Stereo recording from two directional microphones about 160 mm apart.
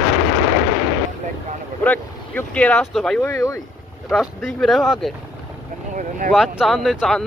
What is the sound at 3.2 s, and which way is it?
Speech, 20° left (ahead or behind).